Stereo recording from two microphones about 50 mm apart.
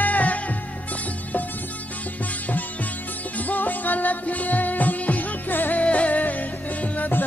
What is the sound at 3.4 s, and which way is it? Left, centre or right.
Music, left.